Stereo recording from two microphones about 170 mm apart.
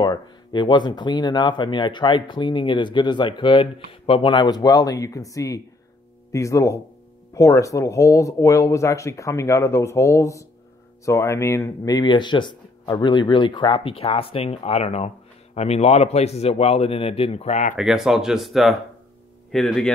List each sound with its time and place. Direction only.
0.0 s a man's voice: 25° left (ahead or behind); by 17.7 s 45° left (ahead or behind)
17.7 s speech: 5° right (ahead or behind)